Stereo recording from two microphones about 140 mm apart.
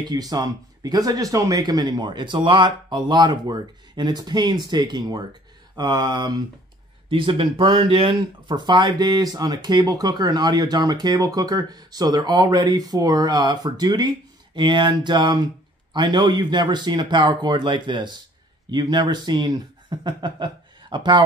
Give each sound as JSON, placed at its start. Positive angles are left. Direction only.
{"t": 0.0, "sound": "speech", "side_deg": -30}